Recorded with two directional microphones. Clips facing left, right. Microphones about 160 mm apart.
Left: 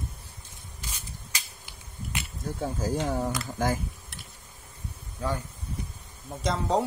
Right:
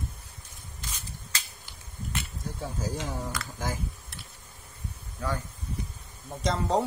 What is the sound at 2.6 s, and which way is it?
Speech, 55° left (ahead or behind).